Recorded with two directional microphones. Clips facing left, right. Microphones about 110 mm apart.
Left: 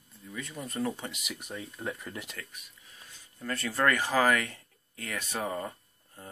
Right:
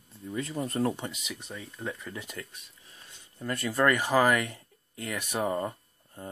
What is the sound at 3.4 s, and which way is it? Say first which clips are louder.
Speech: right 3 dB; 15° right (ahead or behind).